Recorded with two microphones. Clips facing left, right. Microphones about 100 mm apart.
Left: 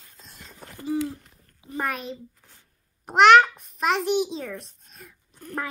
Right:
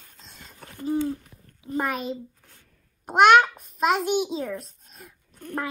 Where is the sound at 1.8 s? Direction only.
5° right (ahead or behind).